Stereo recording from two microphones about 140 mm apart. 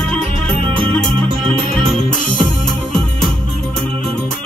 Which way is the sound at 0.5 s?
40° right (ahead or behind).